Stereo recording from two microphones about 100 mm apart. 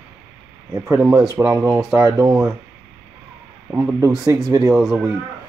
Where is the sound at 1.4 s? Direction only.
15° right (ahead or behind).